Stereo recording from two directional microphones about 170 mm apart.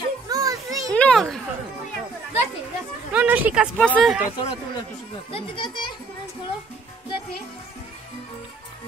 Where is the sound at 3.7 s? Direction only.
5° left (ahead or behind).